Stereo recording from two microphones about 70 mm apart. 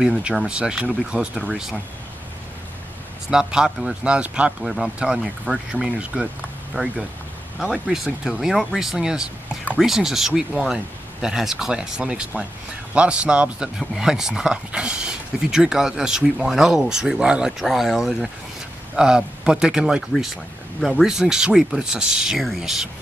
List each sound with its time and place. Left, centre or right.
0.2 s speech: centre
3.3 s speech: centre